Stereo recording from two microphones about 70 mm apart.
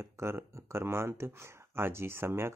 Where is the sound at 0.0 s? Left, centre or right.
Right.